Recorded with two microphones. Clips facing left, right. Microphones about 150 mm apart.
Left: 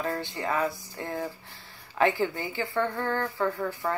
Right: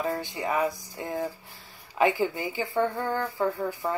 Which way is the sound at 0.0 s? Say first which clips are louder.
Right 1 dB; 15° right (ahead or behind).